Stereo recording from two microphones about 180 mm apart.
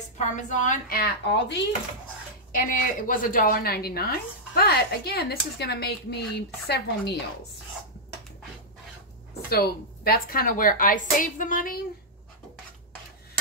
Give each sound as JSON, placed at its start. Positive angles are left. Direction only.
{"t": 0.5, "sound": "a woman's voice", "side_deg": 45}
{"t": 2.5, "sound": "a woman's voice", "side_deg": 50}
{"t": 9.5, "sound": "a woman's voice", "side_deg": 55}